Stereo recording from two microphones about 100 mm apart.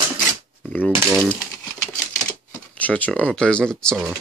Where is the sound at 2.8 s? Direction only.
15° left (ahead or behind).